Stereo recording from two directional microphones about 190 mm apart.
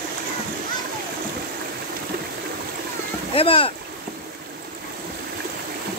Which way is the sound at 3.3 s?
30° left (ahead or behind).